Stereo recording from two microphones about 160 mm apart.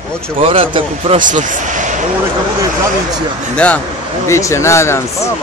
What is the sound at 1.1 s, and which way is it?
Speech, 55° right (ahead or behind).